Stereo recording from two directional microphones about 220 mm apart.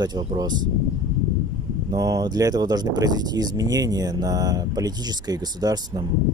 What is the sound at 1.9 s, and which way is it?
Speech, 15° right (ahead or behind).